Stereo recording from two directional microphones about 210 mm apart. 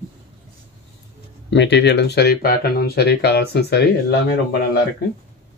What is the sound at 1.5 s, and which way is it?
Speech, 55° left (ahead or behind).